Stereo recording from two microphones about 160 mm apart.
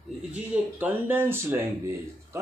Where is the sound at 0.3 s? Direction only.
10° right (ahead or behind).